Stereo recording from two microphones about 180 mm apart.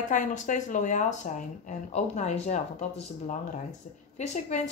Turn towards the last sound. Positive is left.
turn(degrees=40)  # may be behind; listen again after turning